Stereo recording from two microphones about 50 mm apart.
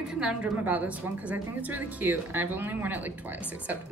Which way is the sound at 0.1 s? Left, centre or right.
Centre.